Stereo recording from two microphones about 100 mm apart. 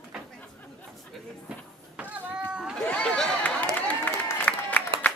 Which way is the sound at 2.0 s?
10° right (ahead or behind).